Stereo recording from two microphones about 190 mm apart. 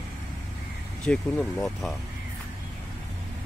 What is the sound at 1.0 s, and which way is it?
Speech, 5° left (ahead or behind).